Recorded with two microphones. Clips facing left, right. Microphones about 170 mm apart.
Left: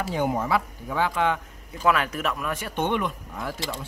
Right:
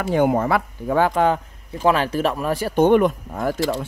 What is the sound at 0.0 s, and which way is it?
Speech, 60° right (ahead or behind).